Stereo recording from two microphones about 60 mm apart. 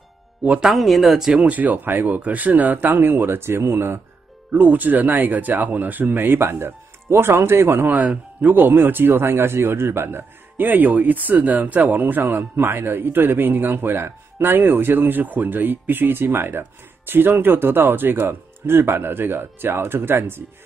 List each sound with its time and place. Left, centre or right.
0.6 s speech: centre
1.3 s speech: right
4.5 s speech: right
7.9 s speech: right